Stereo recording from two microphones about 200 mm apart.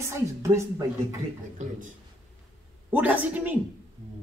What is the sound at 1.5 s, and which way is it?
Speech, 40° right (ahead or behind).